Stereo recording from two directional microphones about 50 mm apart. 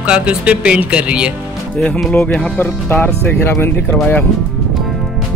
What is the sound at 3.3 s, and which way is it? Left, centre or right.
Speech, left.